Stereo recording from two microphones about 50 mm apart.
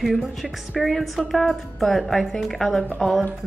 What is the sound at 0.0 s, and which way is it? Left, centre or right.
A woman's voice, centre.